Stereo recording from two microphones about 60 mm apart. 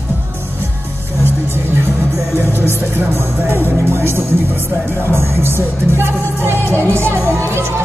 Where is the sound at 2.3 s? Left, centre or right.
Right.